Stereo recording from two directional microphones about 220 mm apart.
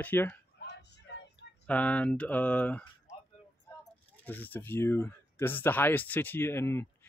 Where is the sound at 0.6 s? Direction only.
50° left (ahead or behind).